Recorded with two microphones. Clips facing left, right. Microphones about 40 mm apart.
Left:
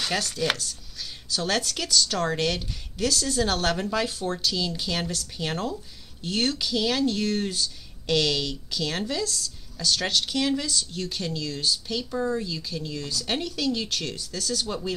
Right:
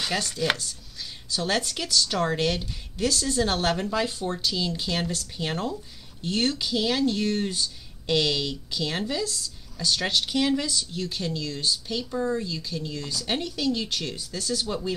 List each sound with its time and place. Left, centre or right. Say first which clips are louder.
0.0 s chopping: even; centre
0.5 s speech: right 1 dB; centre
14.1 s speech: even; centre
14.7 s speech: right 1 dB; centre